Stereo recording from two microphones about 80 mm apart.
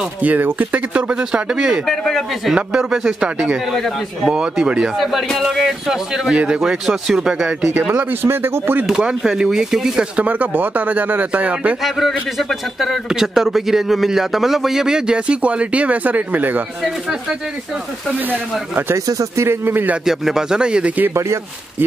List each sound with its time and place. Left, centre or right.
0.2 s speech: right; by 2.5 s centre
2.5 s speech: centre
4.3 s speech: centre
4.9 s a man's voice: centre
7.8 s a man's voice: centre
8.8 s speech: centre
10.2 s a man's voice: right
11.8 s a man's voice: centre; by 16.6 s right
18.9 s speech: right
20.1 s speech: centre
21.1 s speech: right